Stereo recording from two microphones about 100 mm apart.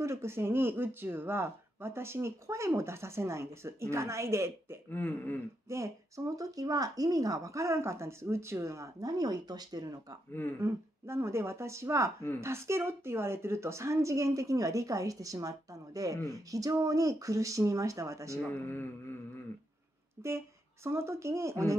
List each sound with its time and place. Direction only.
0.0 s speech: 25° right (ahead or behind)
4.8 s mantra: 20° left (ahead or behind)
5.7 s speech: 30° right (ahead or behind)
10.6 s speech: 25° right (ahead or behind)
18.5 s mantra: 20° left (ahead or behind)
20.2 s speech: 25° right (ahead or behind)